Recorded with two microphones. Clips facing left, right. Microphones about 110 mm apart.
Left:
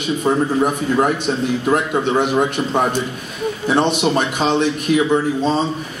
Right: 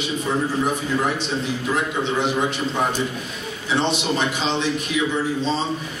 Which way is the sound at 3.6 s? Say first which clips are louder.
Left 5 dB; 55° left (ahead or behind).